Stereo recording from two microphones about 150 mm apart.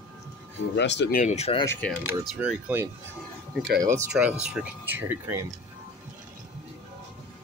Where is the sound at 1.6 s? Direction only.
10° left (ahead or behind).